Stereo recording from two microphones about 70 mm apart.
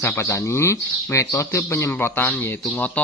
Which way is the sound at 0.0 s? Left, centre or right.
Left.